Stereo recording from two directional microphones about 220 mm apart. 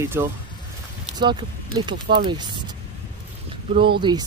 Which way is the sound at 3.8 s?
20° right (ahead or behind).